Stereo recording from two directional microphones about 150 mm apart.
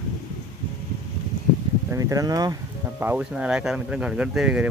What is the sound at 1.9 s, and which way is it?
A man's voice, 25° right (ahead or behind).